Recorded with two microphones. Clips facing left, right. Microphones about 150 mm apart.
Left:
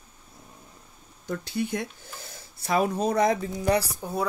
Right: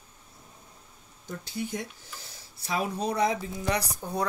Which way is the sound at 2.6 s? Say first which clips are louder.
Left 5 dB; 50° left (ahead or behind).